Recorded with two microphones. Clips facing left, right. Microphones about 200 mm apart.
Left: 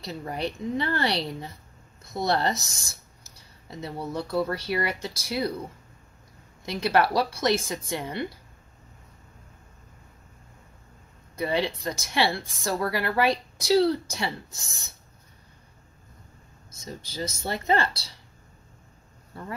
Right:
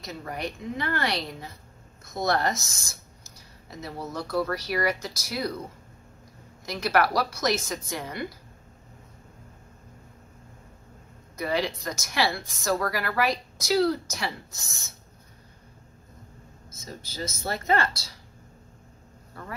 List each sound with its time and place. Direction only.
0.0 s speech: 30° left (ahead or behind)
3.8 s speech: 30° left (ahead or behind)
6.6 s speech: 25° left (ahead or behind)
11.3 s speech: 25° left (ahead or behind)
17.0 s speech: 30° left (ahead or behind)